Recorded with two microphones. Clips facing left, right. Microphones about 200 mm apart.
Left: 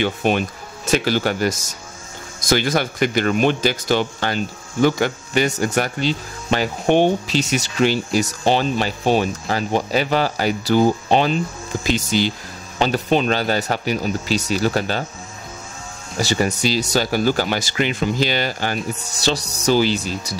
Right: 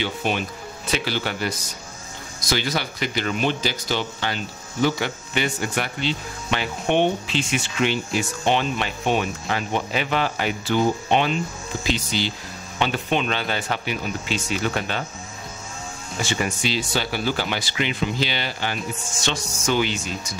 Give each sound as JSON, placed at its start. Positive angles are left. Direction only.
{"t": 0.0, "sound": "speech", "side_deg": 50}
{"t": 11.8, "sound": "speech", "side_deg": 45}
{"t": 16.2, "sound": "speech", "side_deg": 40}